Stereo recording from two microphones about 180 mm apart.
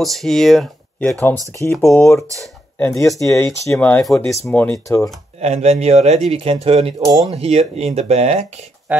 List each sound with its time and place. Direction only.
0.0 s speech: centre (ahead or behind)
1.8 s speech: 15° left (ahead or behind)
5.4 s speech: 35° right (ahead or behind)
7.0 s speech: 20° right (ahead or behind)
7.2 s speech: 35° right (ahead or behind)